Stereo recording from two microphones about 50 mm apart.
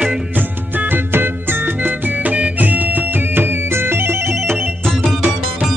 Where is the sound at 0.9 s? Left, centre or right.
Right.